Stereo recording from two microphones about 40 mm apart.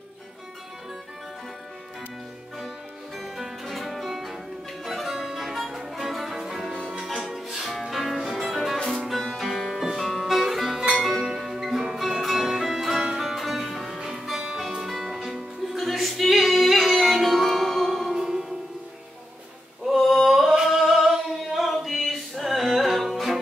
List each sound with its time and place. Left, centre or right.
3.2 s music: centre
11.2 s music: centre
13.0 s music: centre
13.3 s music: centre
13.9 s music: centre
14.8 s music: centre
18.1 s music: centre
19.9 s a sound: centre
20.2 s singing: centre